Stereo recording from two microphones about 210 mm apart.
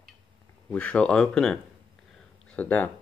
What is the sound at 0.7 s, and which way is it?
Speech, 5° left (ahead or behind).